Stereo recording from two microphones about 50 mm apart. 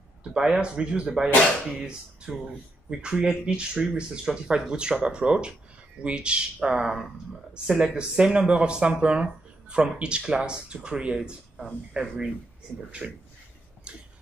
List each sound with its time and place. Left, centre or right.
0.2 s speech: centre
12.7 s speech: left
13.9 s a sound: right